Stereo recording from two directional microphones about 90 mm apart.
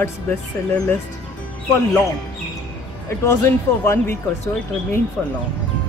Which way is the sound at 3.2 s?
30° left (ahead or behind).